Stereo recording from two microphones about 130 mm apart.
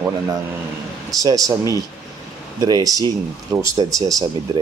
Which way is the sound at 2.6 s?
30° right (ahead or behind).